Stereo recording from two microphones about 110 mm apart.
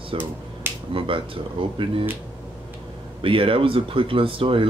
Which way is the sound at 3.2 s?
55° right (ahead or behind).